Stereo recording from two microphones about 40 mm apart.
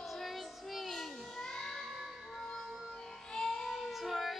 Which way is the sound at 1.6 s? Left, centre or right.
Centre.